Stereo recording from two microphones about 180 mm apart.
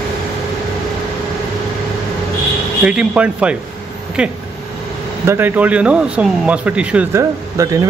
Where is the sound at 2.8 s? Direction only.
5° right (ahead or behind).